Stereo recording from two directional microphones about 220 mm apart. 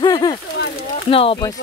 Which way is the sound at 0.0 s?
20° left (ahead or behind).